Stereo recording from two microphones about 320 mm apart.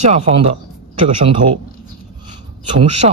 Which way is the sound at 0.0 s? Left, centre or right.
Right.